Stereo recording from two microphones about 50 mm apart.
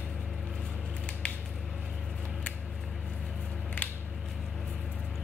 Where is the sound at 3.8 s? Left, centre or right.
Left.